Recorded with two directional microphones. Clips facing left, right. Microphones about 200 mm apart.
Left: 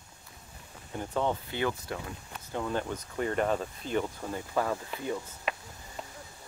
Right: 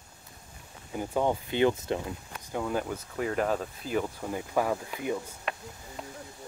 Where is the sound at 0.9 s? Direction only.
10° right (ahead or behind).